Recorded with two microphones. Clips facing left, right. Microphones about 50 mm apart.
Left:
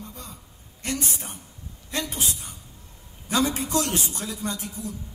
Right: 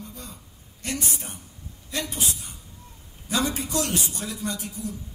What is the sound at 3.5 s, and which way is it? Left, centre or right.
A man's voice, left.